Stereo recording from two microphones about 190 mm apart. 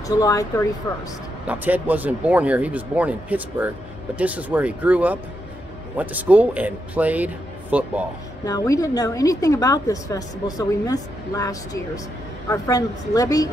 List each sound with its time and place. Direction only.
0.0 s speech: 20° left (ahead or behind)
1.5 s speech: 10° right (ahead or behind)
8.5 s a woman's voice: 20° left (ahead or behind)